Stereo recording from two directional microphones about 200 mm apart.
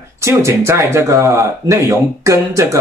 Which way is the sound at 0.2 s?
15° right (ahead or behind).